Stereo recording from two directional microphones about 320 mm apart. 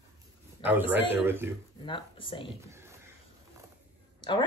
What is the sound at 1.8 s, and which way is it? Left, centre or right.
Speech, centre.